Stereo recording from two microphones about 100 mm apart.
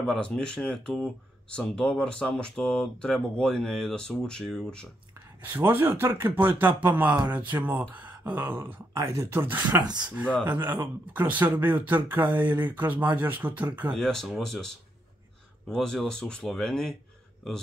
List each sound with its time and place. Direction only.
0.0 s speech: 5° left (ahead or behind)
5.4 s speech: 20° right (ahead or behind)
7.9 s a sound: 15° right (ahead or behind)
8.3 s speech: 20° right (ahead or behind)
9.8 s speech: 45° right (ahead or behind)
10.1 s speech: 15° right (ahead or behind)
13.9 s speech: 5° left (ahead or behind)